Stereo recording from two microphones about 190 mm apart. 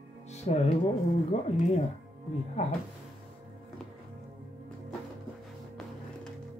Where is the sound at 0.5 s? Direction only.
35° left (ahead or behind).